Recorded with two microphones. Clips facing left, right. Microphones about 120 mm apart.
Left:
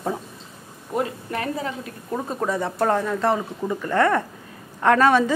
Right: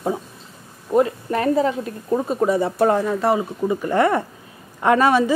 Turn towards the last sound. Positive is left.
turn(degrees=-10)  # may be behind; listen again after turning